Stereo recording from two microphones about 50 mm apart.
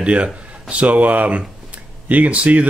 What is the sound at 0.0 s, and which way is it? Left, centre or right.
Speech, right.